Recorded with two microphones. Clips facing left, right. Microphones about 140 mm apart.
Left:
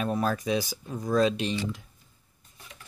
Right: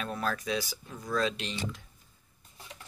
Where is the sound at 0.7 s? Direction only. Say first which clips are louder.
Left 8 dB; 35° left (ahead or behind).